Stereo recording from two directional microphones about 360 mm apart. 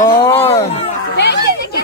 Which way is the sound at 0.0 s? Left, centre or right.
Centre.